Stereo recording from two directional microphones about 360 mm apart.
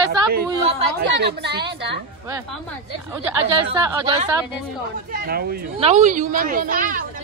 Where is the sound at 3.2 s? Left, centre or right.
Centre.